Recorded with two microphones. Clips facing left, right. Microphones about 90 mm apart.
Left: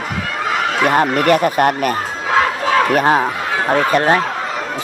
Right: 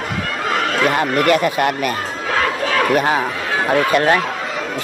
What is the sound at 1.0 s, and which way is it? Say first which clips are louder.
Speech: left 1 dB; 30° left (ahead or behind).